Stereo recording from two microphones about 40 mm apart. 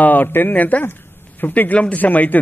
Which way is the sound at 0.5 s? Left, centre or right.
Left.